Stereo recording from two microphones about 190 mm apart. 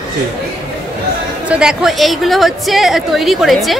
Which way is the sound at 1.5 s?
5° right (ahead or behind).